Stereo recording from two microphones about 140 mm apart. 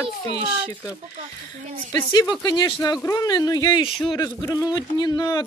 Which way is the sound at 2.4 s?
30° left (ahead or behind).